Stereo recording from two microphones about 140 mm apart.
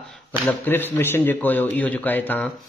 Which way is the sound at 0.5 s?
15° left (ahead or behind).